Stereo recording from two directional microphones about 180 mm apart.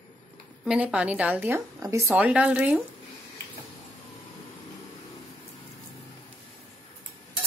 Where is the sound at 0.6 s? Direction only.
5° right (ahead or behind).